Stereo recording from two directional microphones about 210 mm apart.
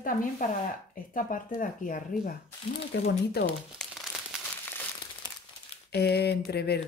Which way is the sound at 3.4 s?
Centre (ahead or behind).